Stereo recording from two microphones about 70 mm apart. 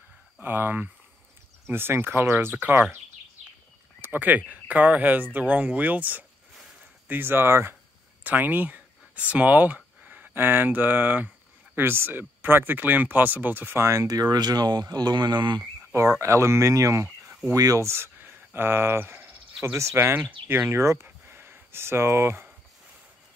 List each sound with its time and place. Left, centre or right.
0.4 s speech: right
4.0 s speech: right
13.7 s speech: right
14.0 s speech: right
16.2 s speech: right
17.6 s speech: right
17.8 s speech: right
20.2 s speech: right
20.5 s speech: right